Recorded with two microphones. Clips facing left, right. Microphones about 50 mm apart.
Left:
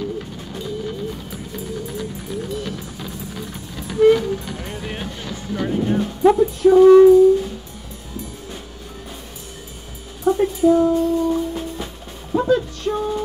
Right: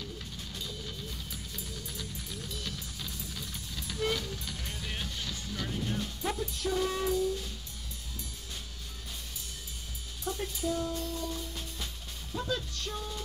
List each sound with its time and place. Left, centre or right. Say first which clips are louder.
0.0 s music: left 15 dB; left
10.2 s music: left 19 dB; left